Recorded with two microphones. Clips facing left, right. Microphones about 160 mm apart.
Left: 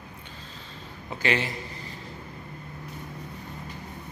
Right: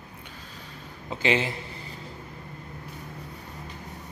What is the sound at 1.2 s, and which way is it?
Speech, 30° right (ahead or behind).